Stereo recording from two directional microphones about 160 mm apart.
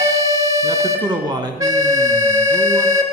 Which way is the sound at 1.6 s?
20° right (ahead or behind).